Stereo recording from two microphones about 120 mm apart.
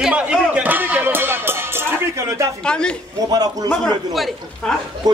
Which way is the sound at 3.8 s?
Centre (ahead or behind).